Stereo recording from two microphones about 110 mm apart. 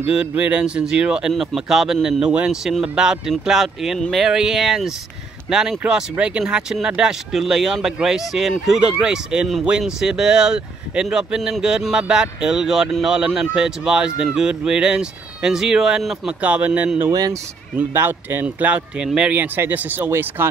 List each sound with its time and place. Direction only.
0.3 s speech: 15° right (ahead or behind)
17.1 s speech: 35° right (ahead or behind)
17.7 s speech: 20° right (ahead or behind)